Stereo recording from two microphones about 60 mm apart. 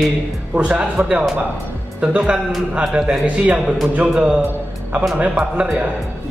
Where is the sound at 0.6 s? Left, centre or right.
Right.